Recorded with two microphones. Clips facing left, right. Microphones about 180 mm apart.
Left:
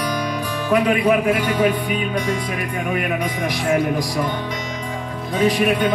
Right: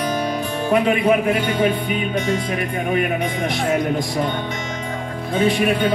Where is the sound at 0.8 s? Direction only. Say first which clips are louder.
Even; 25° right (ahead or behind).